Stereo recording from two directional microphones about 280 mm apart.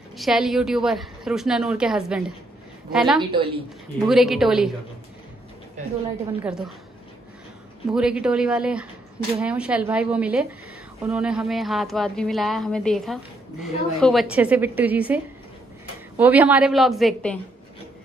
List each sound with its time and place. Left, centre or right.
0.2 s speech: centre
3.2 s a woman's voice: centre
4.0 s speech: centre
7.9 s speech: centre